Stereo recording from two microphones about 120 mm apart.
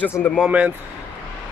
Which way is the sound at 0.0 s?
15° left (ahead or behind).